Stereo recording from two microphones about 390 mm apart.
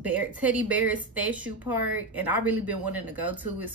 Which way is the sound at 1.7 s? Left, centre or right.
Right.